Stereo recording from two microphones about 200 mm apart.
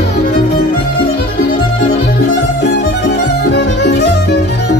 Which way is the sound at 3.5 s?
55° left (ahead or behind).